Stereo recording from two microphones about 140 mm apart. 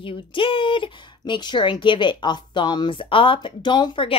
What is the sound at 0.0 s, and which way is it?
Speech, 40° left (ahead or behind).